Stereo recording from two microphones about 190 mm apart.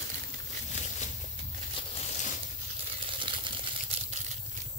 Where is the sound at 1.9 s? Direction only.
40° left (ahead or behind).